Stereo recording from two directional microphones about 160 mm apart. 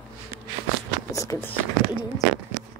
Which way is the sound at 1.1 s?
20° left (ahead or behind).